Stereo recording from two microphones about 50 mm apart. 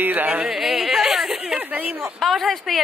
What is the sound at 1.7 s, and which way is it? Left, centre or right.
Speech, right.